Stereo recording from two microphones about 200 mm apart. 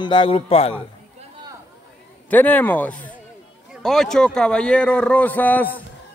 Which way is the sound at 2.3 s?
10° left (ahead or behind).